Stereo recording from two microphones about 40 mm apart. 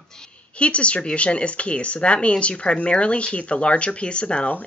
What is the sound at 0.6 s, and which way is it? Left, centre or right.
Speech, left.